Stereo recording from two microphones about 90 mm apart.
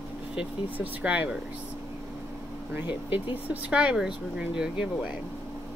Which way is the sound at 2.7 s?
20° right (ahead or behind).